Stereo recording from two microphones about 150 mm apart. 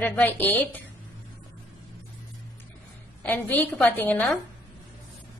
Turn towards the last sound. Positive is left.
turn(degrees=10)  # may be behind; listen again after turning